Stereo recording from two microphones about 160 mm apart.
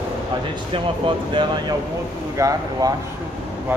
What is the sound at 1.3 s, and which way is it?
A man's voice, 30° right (ahead or behind).